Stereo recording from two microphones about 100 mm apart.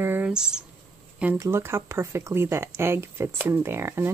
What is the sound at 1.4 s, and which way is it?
Speech, 25° right (ahead or behind).